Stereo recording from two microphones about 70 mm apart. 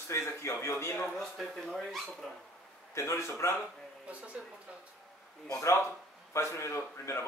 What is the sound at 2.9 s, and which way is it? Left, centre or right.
Speech, left.